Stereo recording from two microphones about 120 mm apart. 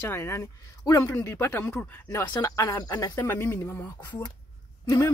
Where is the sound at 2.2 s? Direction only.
30° left (ahead or behind).